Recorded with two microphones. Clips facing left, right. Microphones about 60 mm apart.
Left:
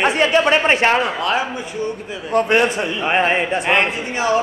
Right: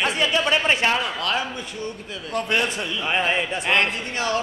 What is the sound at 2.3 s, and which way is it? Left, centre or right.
A man's voice, left.